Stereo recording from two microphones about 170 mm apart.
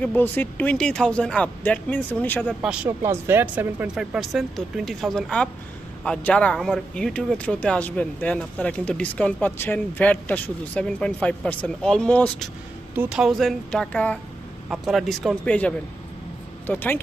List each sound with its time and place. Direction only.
0.0 s speech: 10° left (ahead or behind)
2.6 s speech: 5° right (ahead or behind); by 17.0 s 10° left (ahead or behind)